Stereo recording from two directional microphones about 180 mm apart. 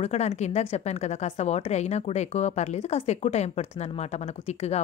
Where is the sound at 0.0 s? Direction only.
35° left (ahead or behind).